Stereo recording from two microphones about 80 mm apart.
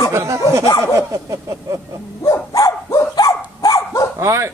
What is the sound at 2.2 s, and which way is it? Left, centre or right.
Dog, left.